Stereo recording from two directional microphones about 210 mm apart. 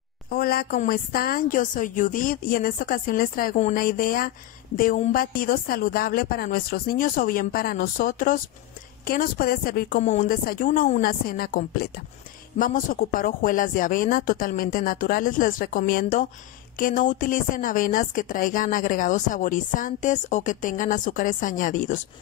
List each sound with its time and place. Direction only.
0.3 s a woman's voice: 45° left (ahead or behind)